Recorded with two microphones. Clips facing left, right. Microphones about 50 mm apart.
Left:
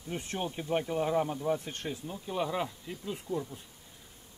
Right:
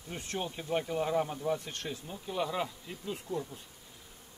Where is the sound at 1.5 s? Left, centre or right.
Centre.